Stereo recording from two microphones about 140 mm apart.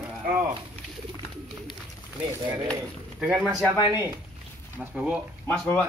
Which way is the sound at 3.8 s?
25° left (ahead or behind).